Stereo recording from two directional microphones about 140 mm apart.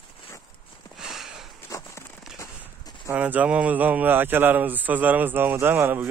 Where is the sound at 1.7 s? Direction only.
25° left (ahead or behind).